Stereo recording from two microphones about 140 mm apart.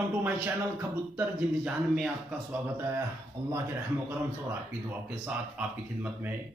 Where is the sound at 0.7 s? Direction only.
15° right (ahead or behind).